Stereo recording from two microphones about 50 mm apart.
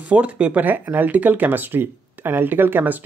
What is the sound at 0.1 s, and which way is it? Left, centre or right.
Speech, right.